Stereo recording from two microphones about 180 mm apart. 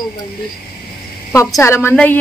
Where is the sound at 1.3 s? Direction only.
15° left (ahead or behind).